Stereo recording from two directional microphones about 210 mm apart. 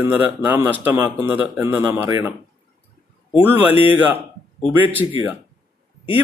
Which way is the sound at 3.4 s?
10° right (ahead or behind).